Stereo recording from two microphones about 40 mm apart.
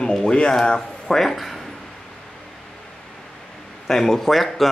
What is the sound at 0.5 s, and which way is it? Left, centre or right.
Speech, centre.